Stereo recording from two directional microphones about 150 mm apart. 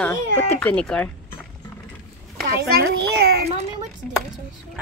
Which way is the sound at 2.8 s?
90° right.